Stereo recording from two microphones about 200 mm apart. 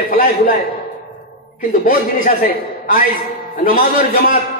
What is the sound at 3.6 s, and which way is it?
Speech, 45° left (ahead or behind).